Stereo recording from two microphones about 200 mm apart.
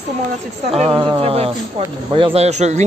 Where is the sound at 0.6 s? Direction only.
30° right (ahead or behind).